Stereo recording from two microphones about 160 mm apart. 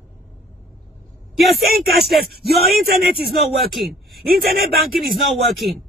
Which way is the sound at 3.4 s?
Centre (ahead or behind).